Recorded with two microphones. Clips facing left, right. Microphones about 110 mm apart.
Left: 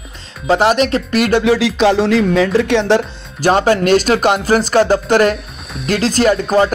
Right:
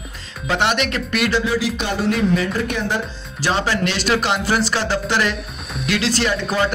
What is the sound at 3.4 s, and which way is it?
Speech, 50° left (ahead or behind).